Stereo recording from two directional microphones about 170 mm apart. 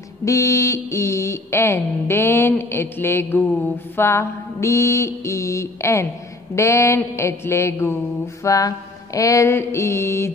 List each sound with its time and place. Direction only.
0.2 s mantra: 20° left (ahead or behind)